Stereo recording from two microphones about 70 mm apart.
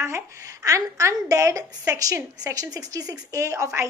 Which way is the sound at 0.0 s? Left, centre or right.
Right.